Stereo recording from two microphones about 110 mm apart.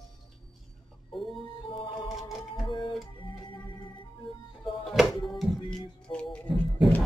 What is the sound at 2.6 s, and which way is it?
Music, 50° left (ahead or behind).